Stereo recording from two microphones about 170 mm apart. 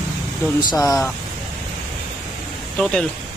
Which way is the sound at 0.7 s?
20° left (ahead or behind).